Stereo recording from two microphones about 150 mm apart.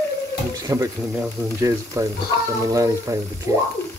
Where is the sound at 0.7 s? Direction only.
20° right (ahead or behind).